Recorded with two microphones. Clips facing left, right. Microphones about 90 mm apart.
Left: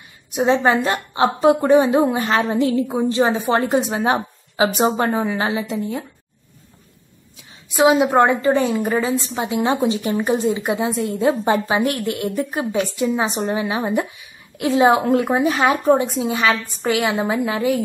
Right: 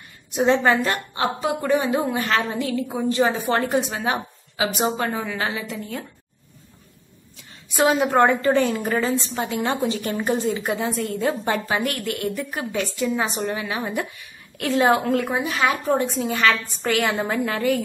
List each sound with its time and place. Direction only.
0.3 s a woman's voice: 15° left (ahead or behind)
7.8 s a woman's voice: 10° left (ahead or behind)